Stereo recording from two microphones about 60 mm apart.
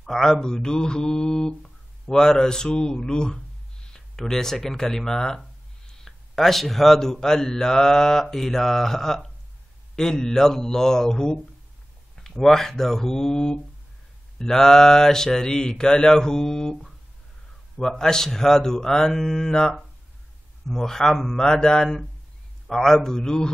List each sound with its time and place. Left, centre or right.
0.0 s mantra: centre
3.9 s speech: centre
5.9 s mantra: centre